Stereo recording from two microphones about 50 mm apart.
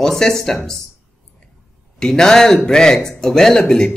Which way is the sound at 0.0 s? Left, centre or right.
Centre.